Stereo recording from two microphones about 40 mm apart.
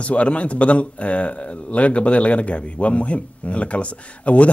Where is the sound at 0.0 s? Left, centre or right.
Left.